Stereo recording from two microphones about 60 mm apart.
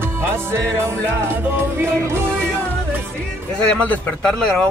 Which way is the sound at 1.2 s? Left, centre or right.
Right.